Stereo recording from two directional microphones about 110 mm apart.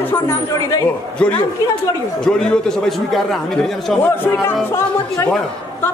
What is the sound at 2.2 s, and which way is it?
A man's voice, 5° left (ahead or behind).